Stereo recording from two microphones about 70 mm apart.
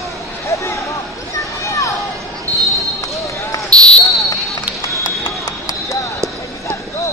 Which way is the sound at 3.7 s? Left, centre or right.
Centre.